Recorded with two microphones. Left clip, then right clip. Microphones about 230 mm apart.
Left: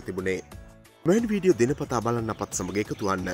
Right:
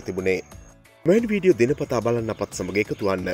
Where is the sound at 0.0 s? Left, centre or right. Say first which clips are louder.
Right 5 dB; centre.